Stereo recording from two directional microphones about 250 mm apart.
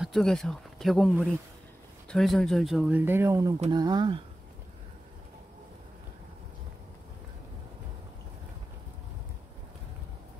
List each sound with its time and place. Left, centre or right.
0.0 s speech: centre